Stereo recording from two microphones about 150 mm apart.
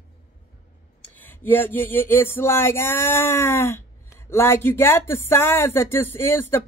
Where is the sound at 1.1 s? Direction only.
15° left (ahead or behind).